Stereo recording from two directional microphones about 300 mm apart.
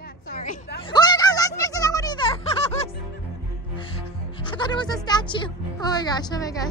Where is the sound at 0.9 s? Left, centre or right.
Centre.